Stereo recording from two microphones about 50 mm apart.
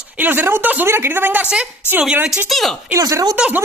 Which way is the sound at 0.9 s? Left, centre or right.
Right.